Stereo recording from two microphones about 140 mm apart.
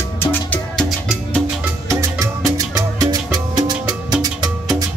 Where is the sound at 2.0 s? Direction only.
25° right (ahead or behind).